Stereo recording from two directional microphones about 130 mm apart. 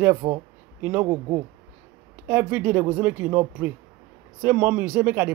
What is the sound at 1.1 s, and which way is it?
Speech, 30° right (ahead or behind).